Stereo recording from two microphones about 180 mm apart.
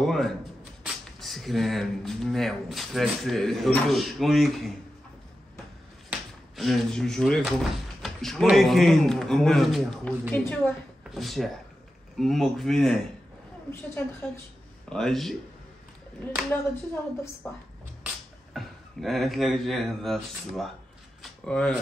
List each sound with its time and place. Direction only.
0.0 s speech: centre (ahead or behind)
6.0 s speech: centre (ahead or behind)
13.7 s a woman's voice: 15° left (ahead or behind)
14.9 s speech: centre (ahead or behind)
16.9 s a woman's voice: 10° left (ahead or behind)
18.5 s speech: centre (ahead or behind)
21.2 s a sound: 5° left (ahead or behind)